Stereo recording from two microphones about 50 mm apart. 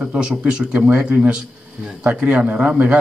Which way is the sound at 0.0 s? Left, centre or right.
Centre.